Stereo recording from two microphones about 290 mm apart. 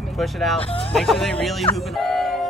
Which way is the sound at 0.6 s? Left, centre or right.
Centre.